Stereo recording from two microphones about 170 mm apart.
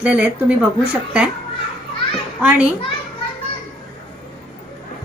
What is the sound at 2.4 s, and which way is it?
Speech, 5° right (ahead or behind).